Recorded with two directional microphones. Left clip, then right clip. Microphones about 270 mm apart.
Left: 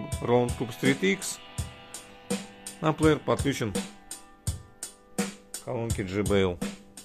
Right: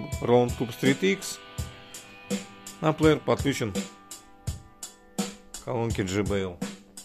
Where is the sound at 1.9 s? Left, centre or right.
Left.